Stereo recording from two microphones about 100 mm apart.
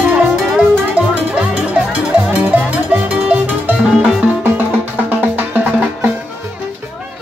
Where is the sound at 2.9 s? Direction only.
15° right (ahead or behind).